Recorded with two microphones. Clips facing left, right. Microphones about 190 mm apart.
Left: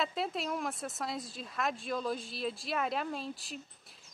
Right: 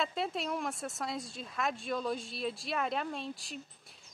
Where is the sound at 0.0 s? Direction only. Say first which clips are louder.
Even; centre (ahead or behind).